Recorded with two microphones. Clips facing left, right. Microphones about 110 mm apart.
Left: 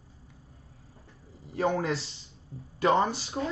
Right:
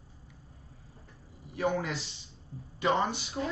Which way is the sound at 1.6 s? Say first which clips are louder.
Left 3 dB; 35° left (ahead or behind).